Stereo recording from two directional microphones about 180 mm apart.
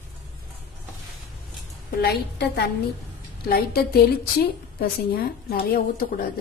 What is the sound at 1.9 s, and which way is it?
A woman's voice, 65° left (ahead or behind).